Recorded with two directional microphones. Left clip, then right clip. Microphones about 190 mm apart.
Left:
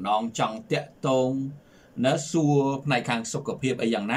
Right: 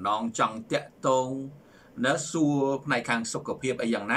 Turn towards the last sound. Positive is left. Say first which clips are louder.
# left 2 dB
turn(degrees=15)  # may be behind; listen again after turning